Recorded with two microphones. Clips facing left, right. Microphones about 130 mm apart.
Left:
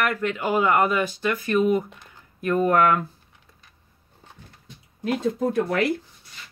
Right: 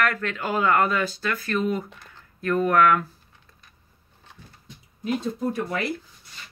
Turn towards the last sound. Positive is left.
turn(degrees=90)